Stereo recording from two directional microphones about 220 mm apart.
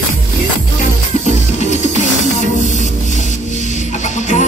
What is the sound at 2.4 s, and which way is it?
Hiss, 35° left (ahead or behind).